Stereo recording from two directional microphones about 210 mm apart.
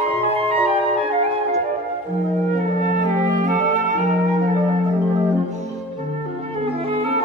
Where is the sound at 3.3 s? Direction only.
35° right (ahead or behind).